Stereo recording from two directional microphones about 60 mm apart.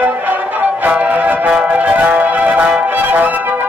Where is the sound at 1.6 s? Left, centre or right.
Right.